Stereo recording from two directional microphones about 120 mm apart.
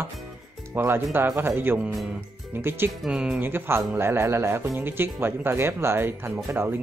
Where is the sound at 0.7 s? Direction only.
15° right (ahead or behind).